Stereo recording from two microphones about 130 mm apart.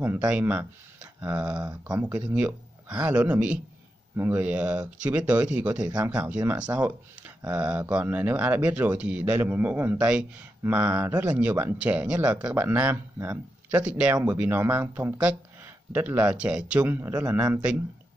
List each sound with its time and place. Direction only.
0.0 s a man's voice: 10° right (ahead or behind)